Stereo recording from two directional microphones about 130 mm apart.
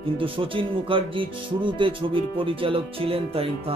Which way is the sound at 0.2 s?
40° right (ahead or behind).